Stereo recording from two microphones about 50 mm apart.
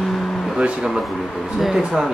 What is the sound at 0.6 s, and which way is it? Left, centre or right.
Speech, centre.